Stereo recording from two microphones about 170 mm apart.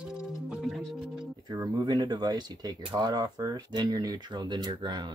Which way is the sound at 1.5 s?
25° right (ahead or behind).